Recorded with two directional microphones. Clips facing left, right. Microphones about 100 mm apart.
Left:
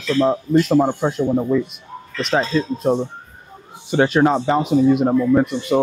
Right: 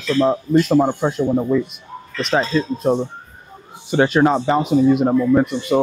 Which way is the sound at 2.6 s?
25° right (ahead or behind).